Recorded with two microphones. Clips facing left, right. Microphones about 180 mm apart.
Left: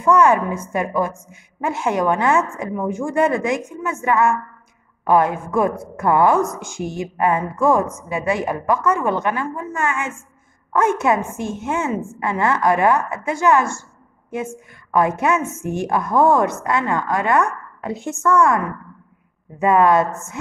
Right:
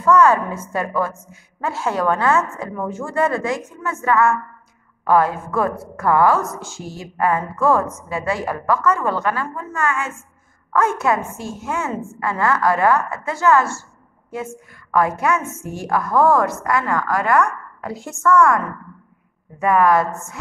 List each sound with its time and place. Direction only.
0.0 s a woman's voice: 15° left (ahead or behind)
14.9 s a woman's voice: 20° left (ahead or behind)